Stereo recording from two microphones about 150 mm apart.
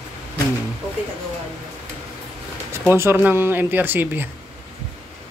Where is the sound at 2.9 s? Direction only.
15° right (ahead or behind).